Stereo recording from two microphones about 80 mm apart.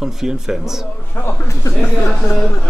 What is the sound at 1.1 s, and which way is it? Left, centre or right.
Speech, left.